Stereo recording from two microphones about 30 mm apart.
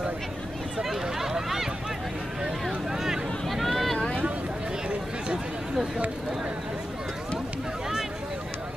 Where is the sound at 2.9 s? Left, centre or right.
Centre.